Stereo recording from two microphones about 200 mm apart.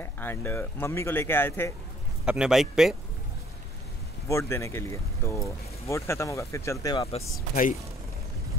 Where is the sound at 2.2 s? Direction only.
5° right (ahead or behind).